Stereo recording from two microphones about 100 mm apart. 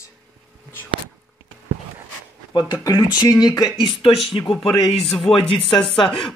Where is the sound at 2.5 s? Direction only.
40° left (ahead or behind).